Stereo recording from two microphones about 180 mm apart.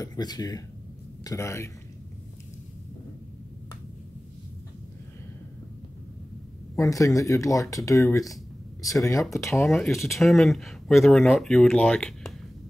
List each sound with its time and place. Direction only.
0.0 s speech: 20° left (ahead or behind)
6.7 s speech: 20° left (ahead or behind)
9.5 s speech: centre (ahead or behind)